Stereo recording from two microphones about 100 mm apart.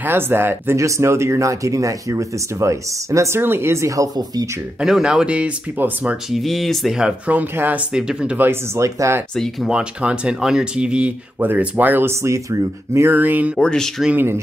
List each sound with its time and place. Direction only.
0.0 s speech: 20° right (ahead or behind)
4.7 s speech: 5° right (ahead or behind)
6.3 s speech: centre (ahead or behind)
8.5 s speech: 30° right (ahead or behind)
9.4 s speech: 5° right (ahead or behind)
13.6 s speech: 5° left (ahead or behind)